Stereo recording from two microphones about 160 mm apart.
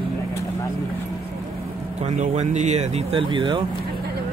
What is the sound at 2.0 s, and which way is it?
Speech, 45° right (ahead or behind).